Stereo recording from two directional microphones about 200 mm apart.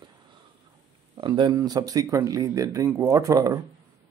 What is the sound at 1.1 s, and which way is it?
Speech, 20° right (ahead or behind).